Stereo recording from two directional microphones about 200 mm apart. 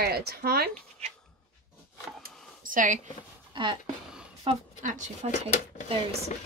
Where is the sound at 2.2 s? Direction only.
40° right (ahead or behind).